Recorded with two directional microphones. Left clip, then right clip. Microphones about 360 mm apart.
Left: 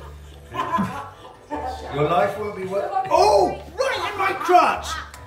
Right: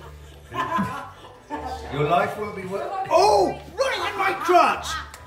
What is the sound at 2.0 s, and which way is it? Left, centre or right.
Speech, centre.